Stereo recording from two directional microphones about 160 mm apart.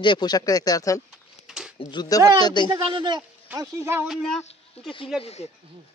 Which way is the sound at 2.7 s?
30° right (ahead or behind).